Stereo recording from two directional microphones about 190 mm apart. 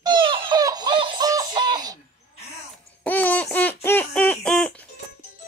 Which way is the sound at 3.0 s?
10° left (ahead or behind).